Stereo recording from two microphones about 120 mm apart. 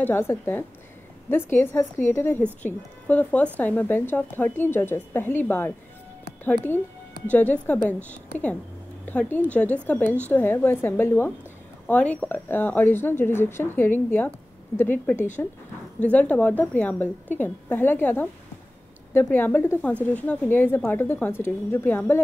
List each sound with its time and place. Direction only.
0.0 s a woman's voice: 20° left (ahead or behind)
19.3 s speech: 15° left (ahead or behind)